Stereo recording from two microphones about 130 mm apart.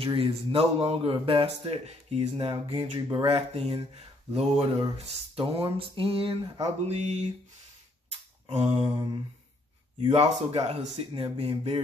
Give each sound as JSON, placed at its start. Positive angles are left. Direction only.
{"t": 0.0, "sound": "a man's voice", "side_deg": -45}
{"t": 2.7, "sound": "speech", "side_deg": -40}
{"t": 3.3, "sound": "a man's voice", "side_deg": -50}
{"t": 6.6, "sound": "music", "side_deg": -60}
{"t": 8.5, "sound": "music", "side_deg": -55}
{"t": 8.8, "sound": "speech", "side_deg": -35}
{"t": 10.1, "sound": "a man's voice", "side_deg": -55}